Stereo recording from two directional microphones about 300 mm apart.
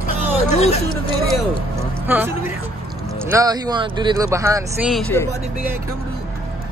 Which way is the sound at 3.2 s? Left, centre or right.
Centre.